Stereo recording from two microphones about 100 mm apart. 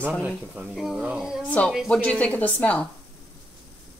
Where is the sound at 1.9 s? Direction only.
10° left (ahead or behind).